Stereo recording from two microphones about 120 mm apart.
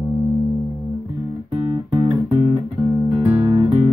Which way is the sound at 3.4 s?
40° right (ahead or behind).